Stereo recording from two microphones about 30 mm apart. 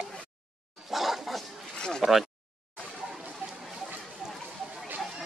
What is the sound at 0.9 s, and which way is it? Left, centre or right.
Dog, centre.